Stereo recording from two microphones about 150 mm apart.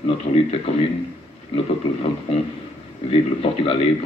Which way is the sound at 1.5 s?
40° left (ahead or behind).